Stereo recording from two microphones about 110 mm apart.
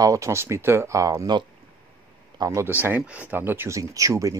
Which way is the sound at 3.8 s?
30° right (ahead or behind).